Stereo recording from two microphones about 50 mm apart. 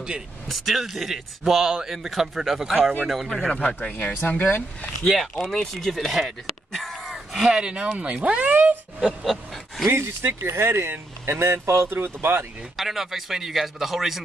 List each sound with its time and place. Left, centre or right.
0.5 s a man's voice: centre
3.4 s speech: centre
3.9 s speech: left
5.0 s speech: centre
7.5 s speech: centre
9.2 s a sound: centre
9.8 s speech: right
11.9 s speech: right
12.7 s a man's voice: centre